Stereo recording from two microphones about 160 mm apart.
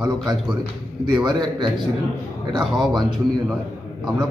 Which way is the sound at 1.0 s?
25° right (ahead or behind).